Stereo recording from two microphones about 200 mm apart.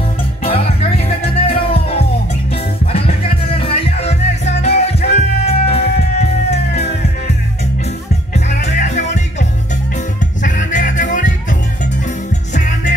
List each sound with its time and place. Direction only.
0.4 s music: 30° left (ahead or behind)
8.3 s music: 35° left (ahead or behind)